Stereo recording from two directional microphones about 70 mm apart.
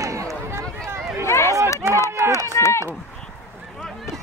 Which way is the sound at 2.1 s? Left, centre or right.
Right.